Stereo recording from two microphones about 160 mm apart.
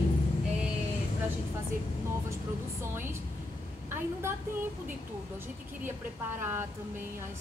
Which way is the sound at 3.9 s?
15° right (ahead or behind).